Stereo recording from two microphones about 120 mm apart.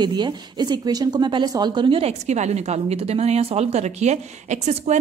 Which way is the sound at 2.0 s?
70° right (ahead or behind).